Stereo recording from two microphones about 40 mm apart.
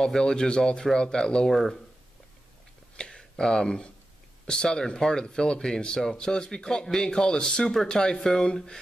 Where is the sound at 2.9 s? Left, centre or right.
Centre.